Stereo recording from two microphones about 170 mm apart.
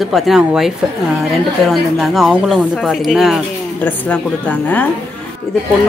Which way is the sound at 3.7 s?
10° left (ahead or behind).